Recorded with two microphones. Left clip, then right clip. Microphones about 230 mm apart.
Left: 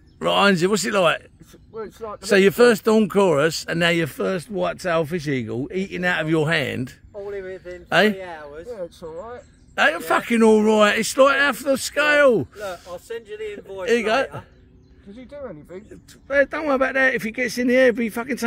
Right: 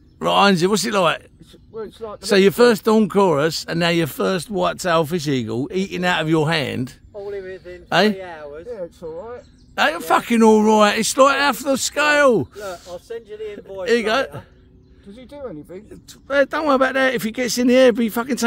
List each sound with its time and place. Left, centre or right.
0.2 s speech: centre
7.2 s a sound: left
7.9 s speech: centre
8.2 s a sound: left
8.6 s speech: centre
12.6 s speech: left
13.3 s speech: left
13.8 s speech: centre
15.1 s speech: right
16.3 s speech: centre